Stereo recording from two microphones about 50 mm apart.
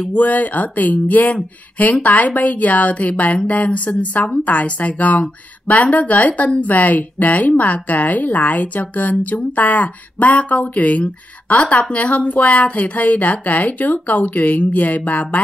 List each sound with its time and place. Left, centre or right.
0.1 s speech: left